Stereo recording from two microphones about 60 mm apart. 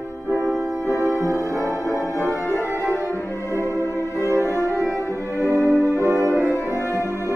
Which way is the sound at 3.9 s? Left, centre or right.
Left.